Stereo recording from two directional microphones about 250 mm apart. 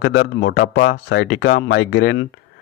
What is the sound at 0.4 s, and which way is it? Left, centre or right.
A man's voice, left.